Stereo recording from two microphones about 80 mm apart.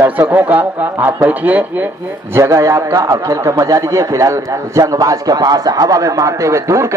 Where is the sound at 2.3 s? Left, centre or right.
Right.